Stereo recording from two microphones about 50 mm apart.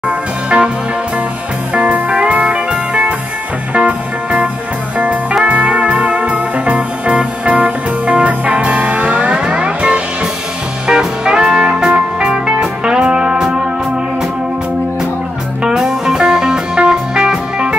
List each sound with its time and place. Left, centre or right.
1.7 s music: right
15.6 s music: centre